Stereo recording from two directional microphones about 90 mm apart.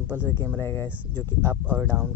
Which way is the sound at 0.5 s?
30° left (ahead or behind).